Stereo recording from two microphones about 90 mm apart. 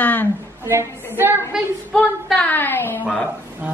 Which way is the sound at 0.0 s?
20° left (ahead or behind).